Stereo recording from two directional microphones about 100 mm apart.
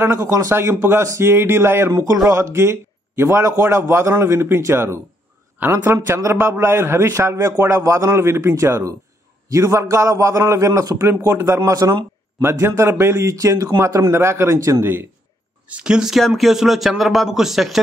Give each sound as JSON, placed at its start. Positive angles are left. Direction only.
{"t": 0.0, "sound": "a man's voice", "side_deg": -25}
{"t": 15.6, "sound": "speech", "side_deg": -10}